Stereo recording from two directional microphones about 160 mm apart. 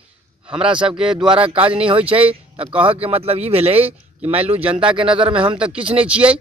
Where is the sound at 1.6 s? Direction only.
5° right (ahead or behind).